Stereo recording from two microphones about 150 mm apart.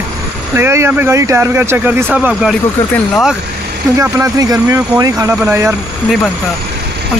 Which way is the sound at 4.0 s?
20° right (ahead or behind).